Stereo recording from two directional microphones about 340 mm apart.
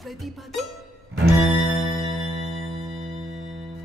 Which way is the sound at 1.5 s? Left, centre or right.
Centre.